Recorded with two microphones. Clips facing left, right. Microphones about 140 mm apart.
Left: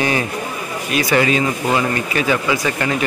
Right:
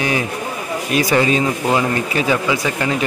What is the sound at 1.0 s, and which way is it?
Speech, 25° right (ahead or behind).